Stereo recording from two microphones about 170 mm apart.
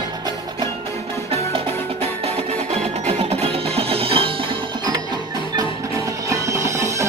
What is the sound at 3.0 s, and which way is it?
Music, 35° right (ahead or behind).